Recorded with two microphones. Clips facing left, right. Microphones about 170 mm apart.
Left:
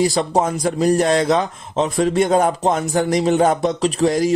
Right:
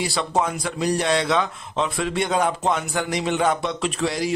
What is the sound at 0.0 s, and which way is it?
A man's voice, 40° left (ahead or behind).